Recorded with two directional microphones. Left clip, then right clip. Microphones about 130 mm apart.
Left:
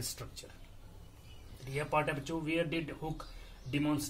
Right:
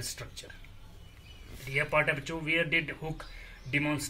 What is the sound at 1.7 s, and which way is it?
Speech, 25° left (ahead or behind).